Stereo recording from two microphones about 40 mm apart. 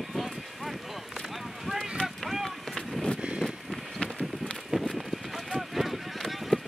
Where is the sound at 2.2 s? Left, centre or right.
Centre.